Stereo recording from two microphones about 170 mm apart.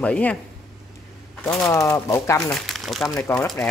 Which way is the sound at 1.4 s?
20° left (ahead or behind).